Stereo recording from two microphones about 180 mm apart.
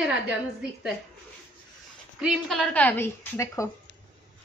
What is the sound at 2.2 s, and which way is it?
A woman's voice, centre (ahead or behind).